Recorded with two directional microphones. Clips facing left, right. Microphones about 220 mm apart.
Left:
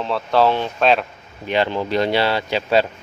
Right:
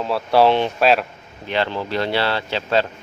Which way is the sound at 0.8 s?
5° right (ahead or behind).